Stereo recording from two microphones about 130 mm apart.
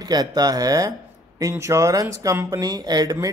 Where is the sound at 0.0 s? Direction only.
30° right (ahead or behind).